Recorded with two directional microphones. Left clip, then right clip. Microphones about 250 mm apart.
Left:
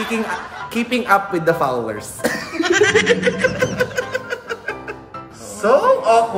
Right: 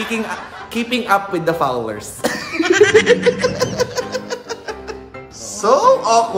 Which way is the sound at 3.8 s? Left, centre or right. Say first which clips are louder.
Even; centre.